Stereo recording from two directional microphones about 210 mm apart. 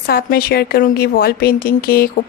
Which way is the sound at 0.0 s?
45° left (ahead or behind).